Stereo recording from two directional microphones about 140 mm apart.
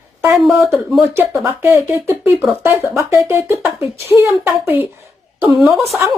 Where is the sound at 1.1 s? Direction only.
20° right (ahead or behind).